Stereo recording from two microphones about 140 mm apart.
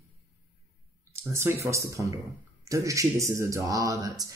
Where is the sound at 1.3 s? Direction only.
20° right (ahead or behind).